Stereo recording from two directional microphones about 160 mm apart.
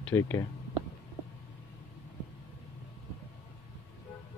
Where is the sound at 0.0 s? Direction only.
15° left (ahead or behind).